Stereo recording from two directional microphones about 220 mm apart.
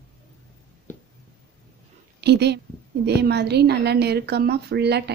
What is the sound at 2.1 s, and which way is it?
A woman's voice, 50° right (ahead or behind).